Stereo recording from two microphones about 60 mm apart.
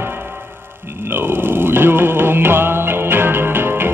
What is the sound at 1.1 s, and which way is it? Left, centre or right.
Music, right.